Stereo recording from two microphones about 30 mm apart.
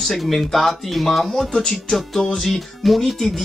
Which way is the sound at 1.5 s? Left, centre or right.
Left.